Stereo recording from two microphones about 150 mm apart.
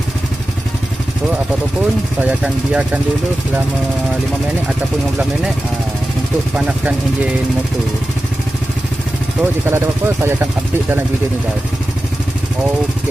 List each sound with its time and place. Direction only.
2.2 s speech: 5° right (ahead or behind)
6.5 s speech: 10° right (ahead or behind)
9.4 s speech: 15° right (ahead or behind)